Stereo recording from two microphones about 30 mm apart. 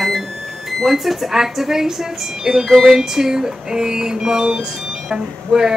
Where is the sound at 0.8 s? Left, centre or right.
Centre.